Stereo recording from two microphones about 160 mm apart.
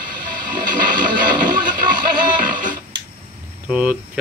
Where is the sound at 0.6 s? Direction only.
55° right (ahead or behind).